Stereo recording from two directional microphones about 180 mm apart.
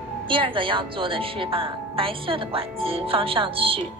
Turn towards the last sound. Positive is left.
turn(degrees=-30)  # may be behind; listen again after turning